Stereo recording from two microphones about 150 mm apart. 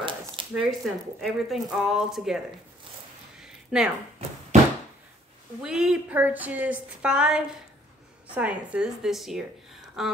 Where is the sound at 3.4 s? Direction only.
5° right (ahead or behind).